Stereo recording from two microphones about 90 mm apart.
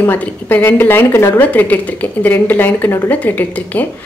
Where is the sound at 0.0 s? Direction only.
20° left (ahead or behind).